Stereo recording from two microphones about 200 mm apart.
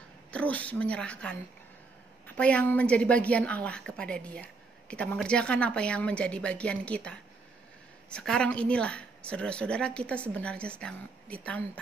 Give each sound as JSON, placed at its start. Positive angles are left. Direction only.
{"t": 0.3, "sound": "a woman's voice", "side_deg": 5}